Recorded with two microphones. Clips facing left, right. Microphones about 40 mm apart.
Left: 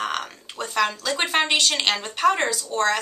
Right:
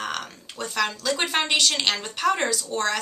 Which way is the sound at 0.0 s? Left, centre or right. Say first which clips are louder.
Left 3 dB; centre.